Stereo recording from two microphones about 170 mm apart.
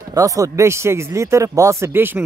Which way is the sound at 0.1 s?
20° right (ahead or behind).